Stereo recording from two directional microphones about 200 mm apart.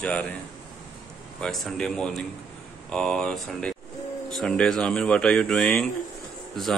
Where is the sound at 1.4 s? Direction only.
Centre (ahead or behind).